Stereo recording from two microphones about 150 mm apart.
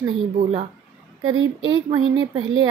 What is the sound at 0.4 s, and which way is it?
Speech, 40° right (ahead or behind).